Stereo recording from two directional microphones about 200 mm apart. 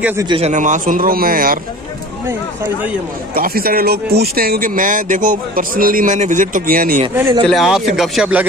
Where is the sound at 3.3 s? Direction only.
45° right (ahead or behind).